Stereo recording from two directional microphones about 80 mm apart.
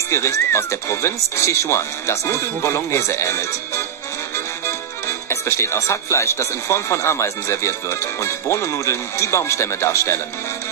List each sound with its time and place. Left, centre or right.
0.1 s speech: left